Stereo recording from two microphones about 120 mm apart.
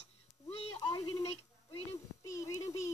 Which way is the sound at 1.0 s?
55° left (ahead or behind).